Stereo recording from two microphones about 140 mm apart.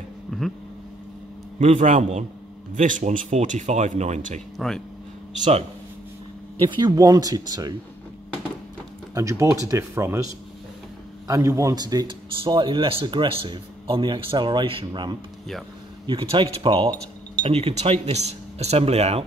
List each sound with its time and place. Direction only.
1.6 s speech: 55° right (ahead or behind)
4.6 s speech: 5° left (ahead or behind)
6.7 s speech: 30° right (ahead or behind)
9.1 s speech: 20° right (ahead or behind)
11.2 s a man's voice: 20° right (ahead or behind); by 19.2 s 45° right (ahead or behind)